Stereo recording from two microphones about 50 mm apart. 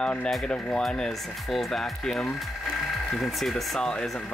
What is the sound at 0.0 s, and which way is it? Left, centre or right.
Speech, left.